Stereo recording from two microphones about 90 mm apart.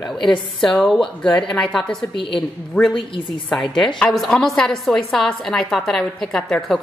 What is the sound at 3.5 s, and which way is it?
A woman's voice, 5° left (ahead or behind).